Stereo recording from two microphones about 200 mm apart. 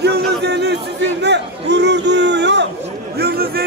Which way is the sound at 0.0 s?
55° right (ahead or behind).